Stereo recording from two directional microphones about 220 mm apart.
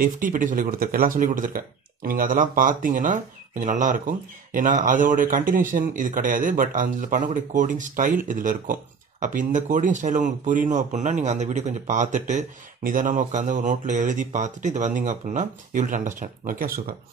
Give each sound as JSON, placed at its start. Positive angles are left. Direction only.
{"t": 0.0, "sound": "speech", "side_deg": -35}